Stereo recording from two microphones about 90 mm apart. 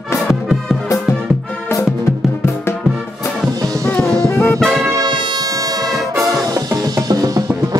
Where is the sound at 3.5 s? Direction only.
45° right (ahead or behind).